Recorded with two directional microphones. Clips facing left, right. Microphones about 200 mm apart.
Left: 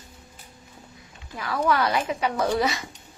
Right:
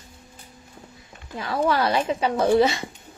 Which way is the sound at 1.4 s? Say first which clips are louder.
Right 1 dB; 25° right (ahead or behind).